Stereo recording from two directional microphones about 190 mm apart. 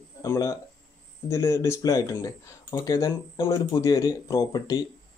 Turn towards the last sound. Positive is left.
turn(degrees=20)  # may be behind; listen again after turning